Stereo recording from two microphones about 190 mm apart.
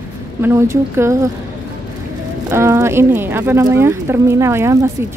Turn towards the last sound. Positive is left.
turn(degrees=-15)  # may be behind; listen again after turning